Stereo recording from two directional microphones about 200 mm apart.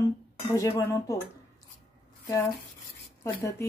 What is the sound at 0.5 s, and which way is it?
Speech, 15° left (ahead or behind).